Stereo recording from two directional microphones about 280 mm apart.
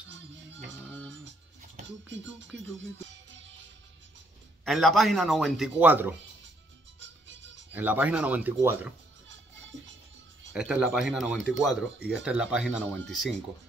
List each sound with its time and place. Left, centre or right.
1.0 s music: right
2.8 s music: right
4.6 s speech: centre
7.7 s speech: centre
9.3 s music: right
10.5 s speech: centre